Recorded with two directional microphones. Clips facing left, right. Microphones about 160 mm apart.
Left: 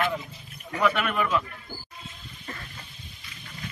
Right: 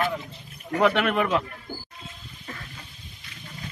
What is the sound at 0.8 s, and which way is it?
Speech, 70° right (ahead or behind).